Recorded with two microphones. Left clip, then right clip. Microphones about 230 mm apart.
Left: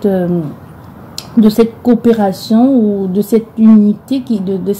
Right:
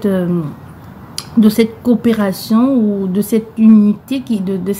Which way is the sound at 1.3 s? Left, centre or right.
Centre.